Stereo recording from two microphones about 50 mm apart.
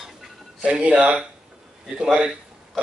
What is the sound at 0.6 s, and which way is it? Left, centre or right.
Speech, right.